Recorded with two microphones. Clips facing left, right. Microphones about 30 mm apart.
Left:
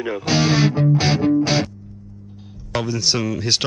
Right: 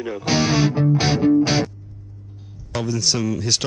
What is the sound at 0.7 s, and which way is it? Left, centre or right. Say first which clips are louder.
Music: left 1 dB; left.